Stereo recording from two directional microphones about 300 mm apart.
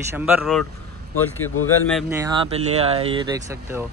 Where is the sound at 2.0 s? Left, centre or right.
Centre.